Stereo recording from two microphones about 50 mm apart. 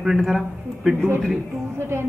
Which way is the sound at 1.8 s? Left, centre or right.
Right.